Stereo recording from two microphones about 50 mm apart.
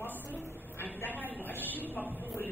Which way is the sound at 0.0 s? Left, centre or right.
Left.